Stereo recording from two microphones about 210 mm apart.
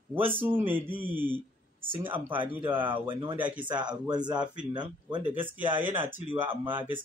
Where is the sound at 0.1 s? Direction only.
10° right (ahead or behind).